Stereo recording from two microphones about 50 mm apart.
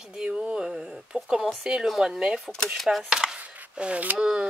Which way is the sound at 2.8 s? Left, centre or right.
Centre.